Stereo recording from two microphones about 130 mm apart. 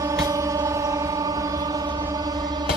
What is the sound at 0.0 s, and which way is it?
Music, 25° right (ahead or behind).